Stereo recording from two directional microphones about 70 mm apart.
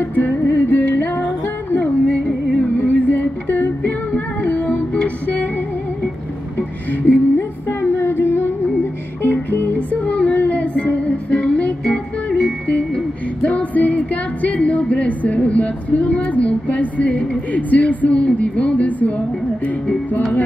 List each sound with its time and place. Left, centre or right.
0.0 s music: left
6.9 s a sound: left
9.2 s music: left